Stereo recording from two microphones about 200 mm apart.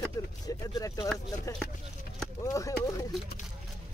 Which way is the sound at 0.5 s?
15° left (ahead or behind).